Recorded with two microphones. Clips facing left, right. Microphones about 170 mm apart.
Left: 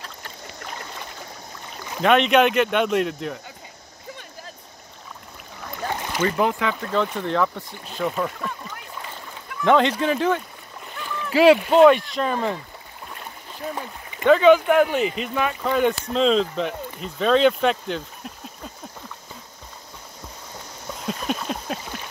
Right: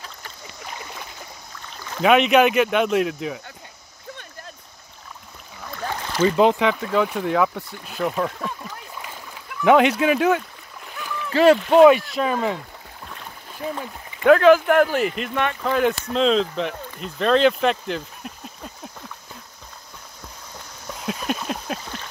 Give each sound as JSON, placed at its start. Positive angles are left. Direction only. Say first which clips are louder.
{"t": 2.0, "sound": "speech", "louder": "right 1 dB", "side_deg": -5}
{"t": 6.2, "sound": "speech", "louder": "right 5 dB", "side_deg": -20}
{"t": 6.7, "sound": "speech", "louder": "right 2 dB", "side_deg": -5}
{"t": 10.9, "sound": "splash", "louder": "even", "side_deg": -5}
{"t": 11.2, "sound": "speech", "louder": "even", "side_deg": 10}
{"t": 14.2, "sound": "speech", "louder": "right 1 dB", "side_deg": -5}
{"t": 21.0, "sound": "a sound", "louder": "right 1 dB", "side_deg": -5}